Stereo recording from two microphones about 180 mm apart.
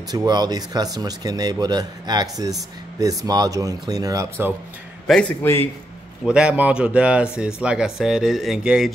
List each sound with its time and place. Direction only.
0.1 s speech: 20° right (ahead or behind)
5.0 s a man's voice: 10° left (ahead or behind)
6.2 s speech: 5° right (ahead or behind)